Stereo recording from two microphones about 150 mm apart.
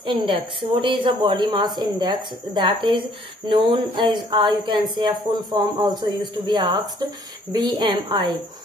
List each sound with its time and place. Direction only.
0.0 s a woman's voice: 35° right (ahead or behind)